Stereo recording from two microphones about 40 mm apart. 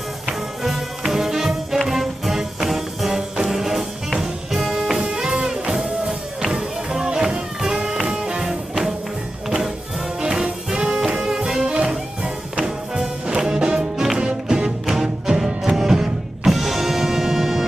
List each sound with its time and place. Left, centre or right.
0.3 s music: centre
10.4 s music: right